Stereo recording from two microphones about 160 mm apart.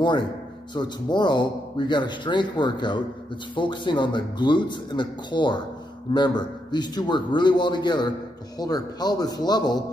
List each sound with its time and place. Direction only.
0.0 s a man's voice: 25° left (ahead or behind)